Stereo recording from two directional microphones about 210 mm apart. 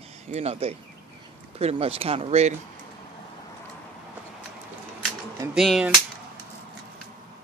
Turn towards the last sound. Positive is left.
turn(degrees=0)  # may be behind; listen again after turning